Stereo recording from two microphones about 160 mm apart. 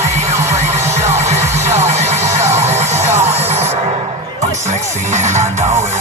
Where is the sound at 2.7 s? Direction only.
45° right (ahead or behind).